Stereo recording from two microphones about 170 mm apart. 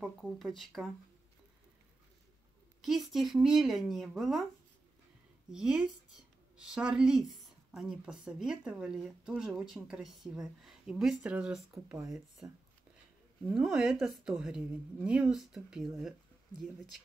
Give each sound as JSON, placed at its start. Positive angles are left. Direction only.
{"t": 0.0, "sound": "speech", "side_deg": 0}
{"t": 2.8, "sound": "speech", "side_deg": 0}
{"t": 5.5, "sound": "speech", "side_deg": -5}
{"t": 11.7, "sound": "speech", "side_deg": -15}
{"t": 13.5, "sound": "speech", "side_deg": -5}